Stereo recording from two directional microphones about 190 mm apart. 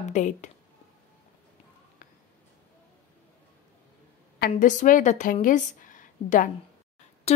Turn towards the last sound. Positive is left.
turn(degrees=35)  # may be behind; listen again after turning